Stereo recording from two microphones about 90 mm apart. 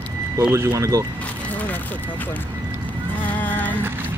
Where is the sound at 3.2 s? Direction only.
20° left (ahead or behind).